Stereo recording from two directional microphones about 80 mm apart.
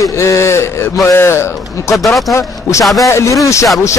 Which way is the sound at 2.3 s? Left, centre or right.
Left.